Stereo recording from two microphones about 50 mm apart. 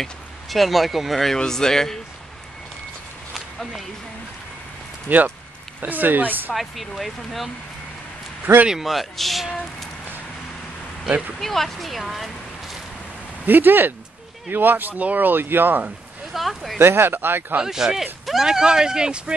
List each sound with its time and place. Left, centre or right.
0.0 s a man's voice: centre
3.3 s a sound: centre
5.1 s speech: right
6.5 s speech: centre
8.6 s speech: centre
11.3 s speech: centre
13.5 s speech: right
16.3 s speech: centre
16.7 s speech: right
17.6 s speech: centre